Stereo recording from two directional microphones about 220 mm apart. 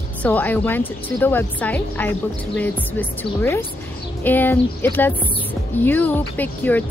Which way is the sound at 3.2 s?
10° left (ahead or behind).